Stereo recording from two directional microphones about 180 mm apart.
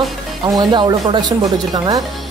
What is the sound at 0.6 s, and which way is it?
Speech, 25° right (ahead or behind).